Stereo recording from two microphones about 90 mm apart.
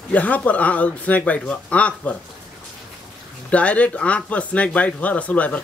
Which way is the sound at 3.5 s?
15° left (ahead or behind).